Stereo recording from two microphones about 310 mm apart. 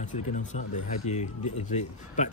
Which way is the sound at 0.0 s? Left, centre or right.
Left.